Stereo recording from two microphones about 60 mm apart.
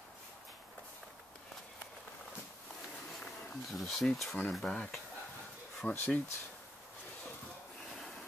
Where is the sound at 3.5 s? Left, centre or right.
Centre; by 6.0 s left.